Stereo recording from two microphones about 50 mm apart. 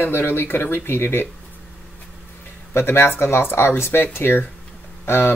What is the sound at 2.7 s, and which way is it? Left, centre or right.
Speech, left.